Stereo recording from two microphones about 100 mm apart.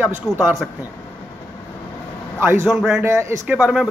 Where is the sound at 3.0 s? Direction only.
25° right (ahead or behind).